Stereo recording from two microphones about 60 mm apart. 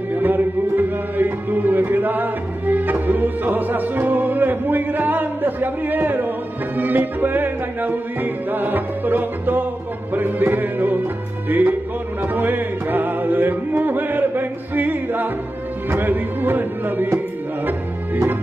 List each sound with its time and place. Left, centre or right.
0.1 s music: right